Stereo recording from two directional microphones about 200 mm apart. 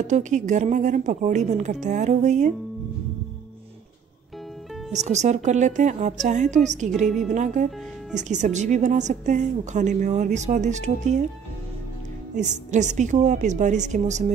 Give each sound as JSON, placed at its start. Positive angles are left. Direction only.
{"t": 0.0, "sound": "a woman's voice", "side_deg": -35}
{"t": 4.9, "sound": "a woman's voice", "side_deg": -35}
{"t": 12.4, "sound": "a woman's voice", "side_deg": -35}